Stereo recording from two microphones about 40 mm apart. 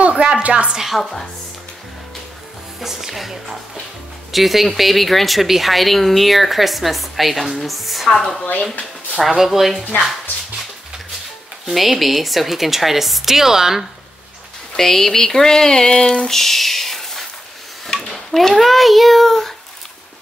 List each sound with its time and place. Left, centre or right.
0.0 s a sound: right
0.8 s speech: centre
2.8 s speech: centre
8.1 s speech: centre
9.3 s speech: centre
11.7 s speech: centre
14.8 s speech: centre; by 16.3 s left
16.3 s a child's voice: centre